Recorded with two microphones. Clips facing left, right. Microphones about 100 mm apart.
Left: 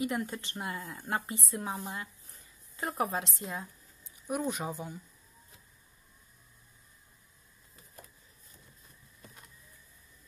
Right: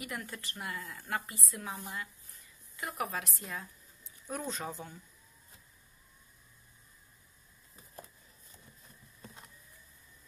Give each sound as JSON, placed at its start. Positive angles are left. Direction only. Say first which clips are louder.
{"t": 0.0, "sound": "a woman's voice", "louder": "left 8 dB", "side_deg": 25}